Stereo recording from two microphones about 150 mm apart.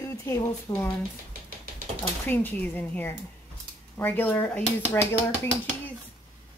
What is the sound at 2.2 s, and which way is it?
Speech, 10° left (ahead or behind).